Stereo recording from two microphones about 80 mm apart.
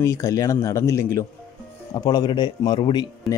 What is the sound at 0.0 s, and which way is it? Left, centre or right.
Speech, left.